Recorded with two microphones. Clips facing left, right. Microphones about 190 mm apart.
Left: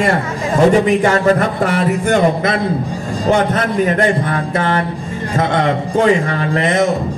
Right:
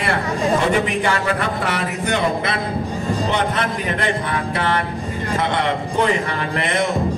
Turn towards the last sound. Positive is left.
turn(degrees=40)  # may be behind; listen again after turning